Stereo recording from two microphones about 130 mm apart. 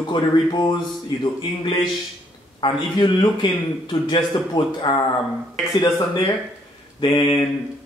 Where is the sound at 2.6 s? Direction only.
40° left (ahead or behind).